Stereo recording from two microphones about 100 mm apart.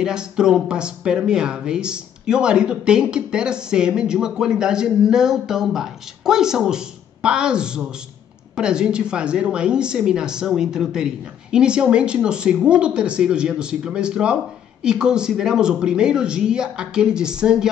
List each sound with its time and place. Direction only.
0.0 s speech: 5° right (ahead or behind)